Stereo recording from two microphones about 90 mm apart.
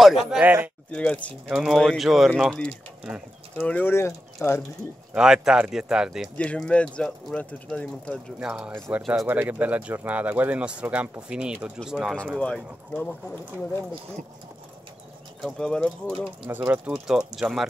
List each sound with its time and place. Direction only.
0.0 s speech: 5° right (ahead or behind)
0.4 s speech: 20° right (ahead or behind)
0.9 s speech: 15° left (ahead or behind)
1.5 s speech: 5° right (ahead or behind)
3.5 s speech: 15° left (ahead or behind)
5.1 s speech: 5° right (ahead or behind)
6.3 s speech: 15° left (ahead or behind)
8.4 s speech: 10° right (ahead or behind)
9.3 s speech: 20° right (ahead or behind)
12.4 s speech: 15° left (ahead or behind)
15.4 s speech: 5° left (ahead or behind)
16.4 s speech: 20° right (ahead or behind)
17.4 s speech: centre (ahead or behind)